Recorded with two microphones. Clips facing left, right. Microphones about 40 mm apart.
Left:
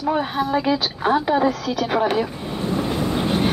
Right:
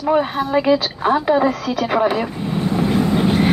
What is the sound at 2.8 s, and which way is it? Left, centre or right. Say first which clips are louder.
Vehicle: right 7 dB; right.